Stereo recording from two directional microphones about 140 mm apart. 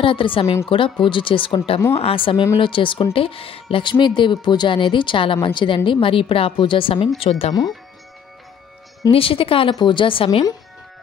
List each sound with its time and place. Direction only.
0.0 s speech: 40° left (ahead or behind)
9.1 s speech: 40° left (ahead or behind)